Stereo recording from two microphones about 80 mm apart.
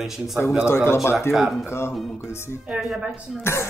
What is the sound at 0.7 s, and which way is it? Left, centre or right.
Speech, left.